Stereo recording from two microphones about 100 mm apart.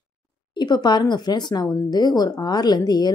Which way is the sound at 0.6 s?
45° left (ahead or behind).